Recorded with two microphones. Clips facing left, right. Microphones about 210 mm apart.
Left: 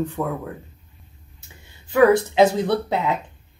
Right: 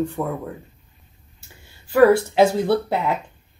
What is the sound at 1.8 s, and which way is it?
Speech, 5° right (ahead or behind).